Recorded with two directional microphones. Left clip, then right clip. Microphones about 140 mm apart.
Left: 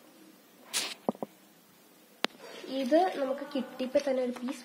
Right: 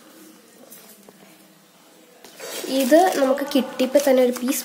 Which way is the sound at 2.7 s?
10° right (ahead or behind).